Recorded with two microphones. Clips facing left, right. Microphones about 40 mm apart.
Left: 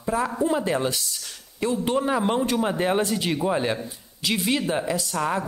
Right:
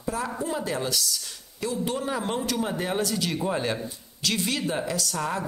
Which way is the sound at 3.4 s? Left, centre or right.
Centre.